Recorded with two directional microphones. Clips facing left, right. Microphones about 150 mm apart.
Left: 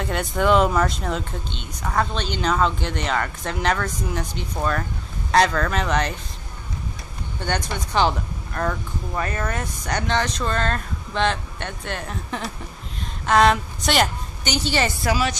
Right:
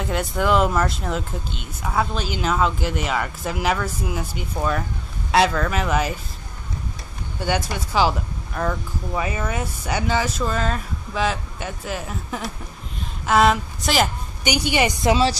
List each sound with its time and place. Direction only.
0.0 s speech: centre (ahead or behind)
7.3 s speech: 5° right (ahead or behind)
14.4 s a woman's voice: 10° right (ahead or behind)